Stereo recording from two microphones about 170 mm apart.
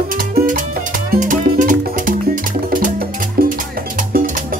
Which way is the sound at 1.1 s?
50° right (ahead or behind).